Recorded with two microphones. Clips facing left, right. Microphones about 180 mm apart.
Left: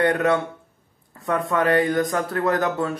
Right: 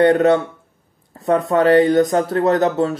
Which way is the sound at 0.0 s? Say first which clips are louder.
Right 7 dB; 30° right (ahead or behind).